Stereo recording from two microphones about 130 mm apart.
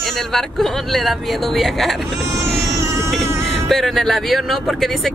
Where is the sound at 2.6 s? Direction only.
20° right (ahead or behind).